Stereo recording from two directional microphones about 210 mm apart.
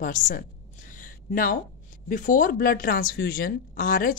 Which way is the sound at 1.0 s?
40° left (ahead or behind).